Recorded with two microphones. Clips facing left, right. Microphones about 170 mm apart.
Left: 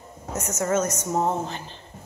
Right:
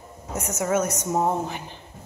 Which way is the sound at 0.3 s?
15° right (ahead or behind).